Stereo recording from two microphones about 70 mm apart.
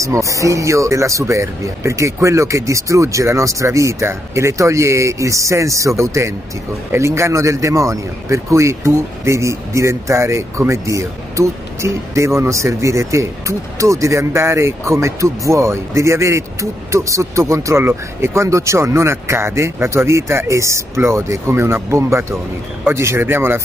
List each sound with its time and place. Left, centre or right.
0.0 s a man's voice: right